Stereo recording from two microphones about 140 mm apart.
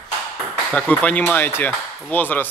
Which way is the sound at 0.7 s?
10° left (ahead or behind).